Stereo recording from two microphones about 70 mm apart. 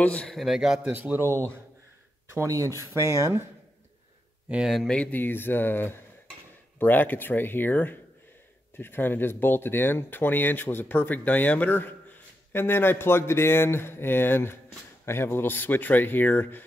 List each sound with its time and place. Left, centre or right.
0.0 s a man's voice: centre
0.3 s a man's voice: centre
0.8 s a man's voice: right
2.3 s speech: right
4.5 s speech: centre
4.8 s a man's voice: centre
5.1 s speech: left